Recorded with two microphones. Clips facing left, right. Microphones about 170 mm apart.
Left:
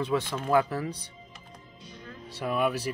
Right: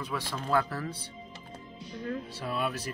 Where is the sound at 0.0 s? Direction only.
25° left (ahead or behind).